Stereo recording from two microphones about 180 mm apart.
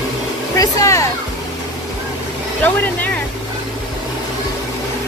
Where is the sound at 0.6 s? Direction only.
20° left (ahead or behind).